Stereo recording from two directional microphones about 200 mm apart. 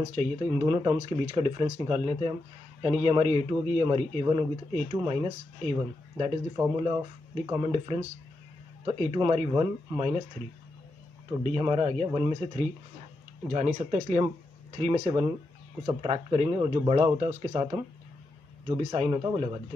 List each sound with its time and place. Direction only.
0.1 s speech: 30° right (ahead or behind)
6.5 s speech: 10° right (ahead or behind)
11.4 s speech: 30° right (ahead or behind)
13.5 s speech: 35° right (ahead or behind)
14.8 s speech: 30° right (ahead or behind)
18.9 s speech: 20° right (ahead or behind)